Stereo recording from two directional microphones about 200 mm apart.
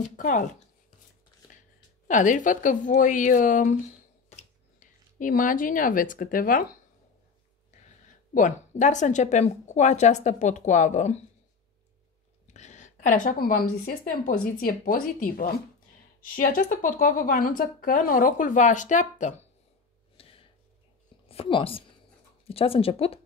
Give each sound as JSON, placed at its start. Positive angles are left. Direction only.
{"t": 0.1, "sound": "speech", "side_deg": 40}
{"t": 2.0, "sound": "speech", "side_deg": 40}
{"t": 8.4, "sound": "speech", "side_deg": 40}
{"t": 12.5, "sound": "a woman's voice", "side_deg": 35}
{"t": 20.2, "sound": "a sound", "side_deg": 30}
{"t": 21.3, "sound": "a woman's voice", "side_deg": 25}